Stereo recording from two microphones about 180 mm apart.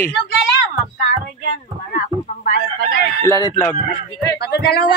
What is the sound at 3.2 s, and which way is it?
Speech, 15° left (ahead or behind).